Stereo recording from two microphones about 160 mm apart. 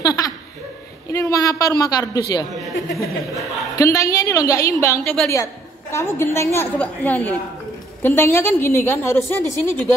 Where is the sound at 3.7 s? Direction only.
20° left (ahead or behind).